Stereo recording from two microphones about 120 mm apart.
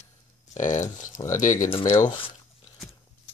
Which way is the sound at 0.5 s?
90° left.